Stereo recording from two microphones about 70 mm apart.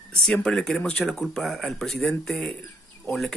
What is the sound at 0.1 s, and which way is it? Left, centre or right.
Speech, centre.